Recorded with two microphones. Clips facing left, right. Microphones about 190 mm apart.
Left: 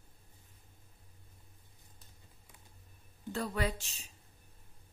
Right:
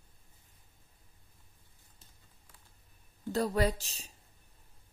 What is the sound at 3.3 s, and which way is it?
Speech, 40° right (ahead or behind).